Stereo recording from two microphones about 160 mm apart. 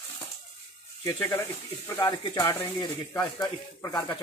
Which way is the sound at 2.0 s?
25° left (ahead or behind).